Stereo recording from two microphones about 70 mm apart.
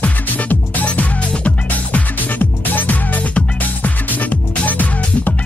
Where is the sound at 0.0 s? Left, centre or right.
Left.